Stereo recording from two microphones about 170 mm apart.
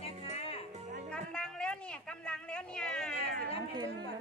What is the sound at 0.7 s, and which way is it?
Music, 45° right (ahead or behind).